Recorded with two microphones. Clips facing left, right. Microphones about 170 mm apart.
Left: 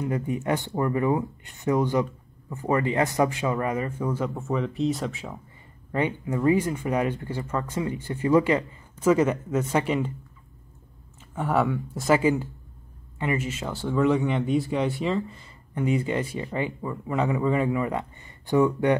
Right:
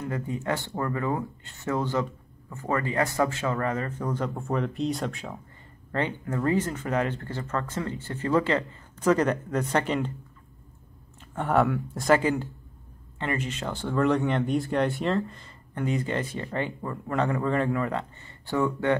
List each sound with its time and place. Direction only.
0.0 s speech: 20° left (ahead or behind)
11.3 s speech: centre (ahead or behind)